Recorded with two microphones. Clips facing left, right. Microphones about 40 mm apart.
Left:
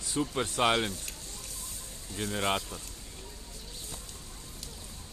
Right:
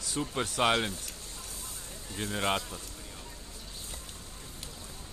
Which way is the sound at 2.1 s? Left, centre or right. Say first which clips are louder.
Even; centre.